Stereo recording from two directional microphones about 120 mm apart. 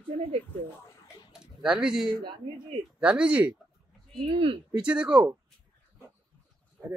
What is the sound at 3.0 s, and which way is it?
Speech, 10° right (ahead or behind).